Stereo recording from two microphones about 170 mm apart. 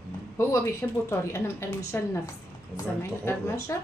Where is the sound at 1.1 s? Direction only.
15° left (ahead or behind).